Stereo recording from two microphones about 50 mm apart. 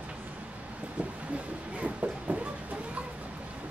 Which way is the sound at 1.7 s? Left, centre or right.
Right.